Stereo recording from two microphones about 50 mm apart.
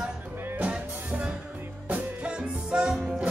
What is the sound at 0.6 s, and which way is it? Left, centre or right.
Music, right.